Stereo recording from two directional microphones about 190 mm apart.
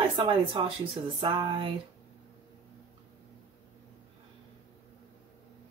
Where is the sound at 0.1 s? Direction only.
25° right (ahead or behind).